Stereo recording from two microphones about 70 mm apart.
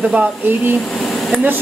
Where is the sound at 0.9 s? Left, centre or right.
Centre.